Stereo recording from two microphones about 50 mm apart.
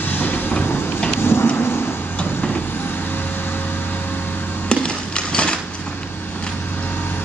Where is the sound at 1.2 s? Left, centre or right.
Left.